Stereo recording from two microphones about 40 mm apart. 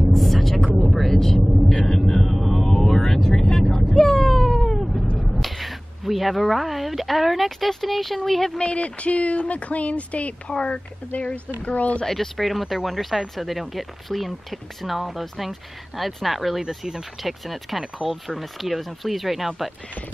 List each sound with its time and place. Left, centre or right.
0.0 s vehicle: centre
1.9 s a sound: centre
2.3 s music: centre
3.1 s cat: centre
5.2 s speech: centre
8.5 s speech: left
12.1 s speech: centre